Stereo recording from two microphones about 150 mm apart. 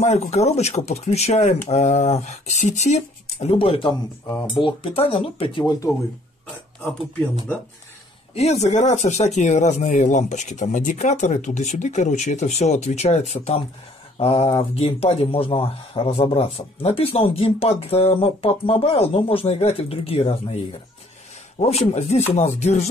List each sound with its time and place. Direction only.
0.0 s speech: 50° left (ahead or behind); by 5.9 s 30° left (ahead or behind)
8.4 s speech: 45° left (ahead or behind)
21.5 s speech: 45° left (ahead or behind)